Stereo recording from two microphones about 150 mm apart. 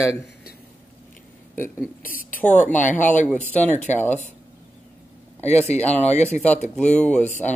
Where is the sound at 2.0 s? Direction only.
70° left (ahead or behind).